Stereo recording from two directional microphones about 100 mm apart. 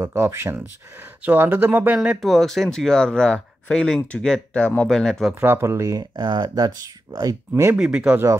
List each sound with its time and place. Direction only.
0.0 s speech: 25° right (ahead or behind)
2.0 s speech: centre (ahead or behind)
5.3 s speech: 25° right (ahead or behind)
7.7 s speech: 5° right (ahead or behind)